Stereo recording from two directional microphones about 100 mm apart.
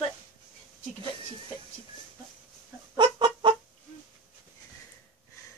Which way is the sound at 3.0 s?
50° right (ahead or behind).